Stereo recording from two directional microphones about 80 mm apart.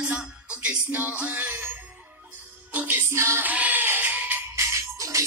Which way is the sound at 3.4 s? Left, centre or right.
Right.